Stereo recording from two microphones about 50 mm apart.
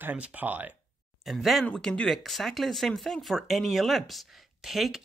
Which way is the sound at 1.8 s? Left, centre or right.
Centre.